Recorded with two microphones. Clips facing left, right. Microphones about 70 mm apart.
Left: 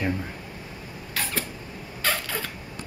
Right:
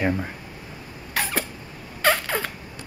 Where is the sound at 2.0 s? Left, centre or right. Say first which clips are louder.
Right 6 dB; right.